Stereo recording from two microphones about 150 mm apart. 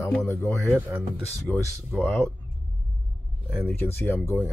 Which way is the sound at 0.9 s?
15° right (ahead or behind).